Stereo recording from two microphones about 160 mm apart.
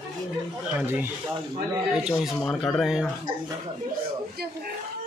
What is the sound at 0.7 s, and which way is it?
Speech, 10° right (ahead or behind).